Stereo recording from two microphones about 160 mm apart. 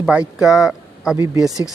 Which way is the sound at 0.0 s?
5° right (ahead or behind).